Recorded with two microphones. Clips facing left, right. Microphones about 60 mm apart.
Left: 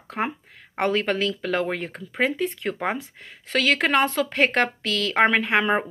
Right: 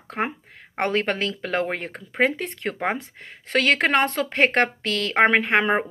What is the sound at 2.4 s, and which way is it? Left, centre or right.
A woman's voice, right.